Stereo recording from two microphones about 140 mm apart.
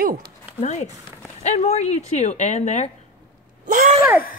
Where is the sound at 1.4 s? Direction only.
55° left (ahead or behind).